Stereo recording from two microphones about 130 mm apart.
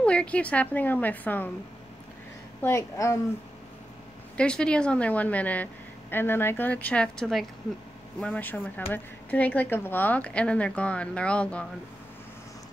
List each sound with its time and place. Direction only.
0.0 s a woman's voice: 10° left (ahead or behind)
2.6 s a woman's voice: 20° left (ahead or behind)
4.4 s a woman's voice: 5° left (ahead or behind)